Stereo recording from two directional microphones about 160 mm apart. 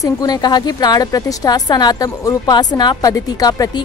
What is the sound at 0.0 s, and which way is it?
Speech, 25° left (ahead or behind).